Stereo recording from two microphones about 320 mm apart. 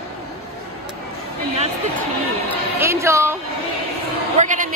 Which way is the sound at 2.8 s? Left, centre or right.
Centre.